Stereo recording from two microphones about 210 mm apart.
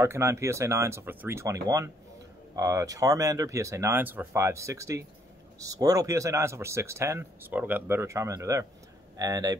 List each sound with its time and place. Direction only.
0.0 s speech: 15° right (ahead or behind)